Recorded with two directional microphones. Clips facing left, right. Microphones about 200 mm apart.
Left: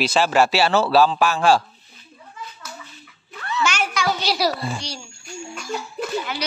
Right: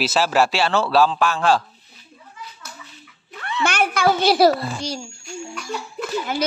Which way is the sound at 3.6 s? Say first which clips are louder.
Right 5 dB; 55° right (ahead or behind).